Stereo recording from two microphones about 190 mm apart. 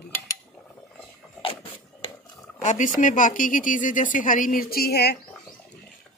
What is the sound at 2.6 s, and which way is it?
Speech, 40° left (ahead or behind).